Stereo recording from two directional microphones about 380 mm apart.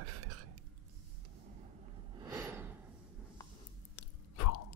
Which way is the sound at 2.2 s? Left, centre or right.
Centre.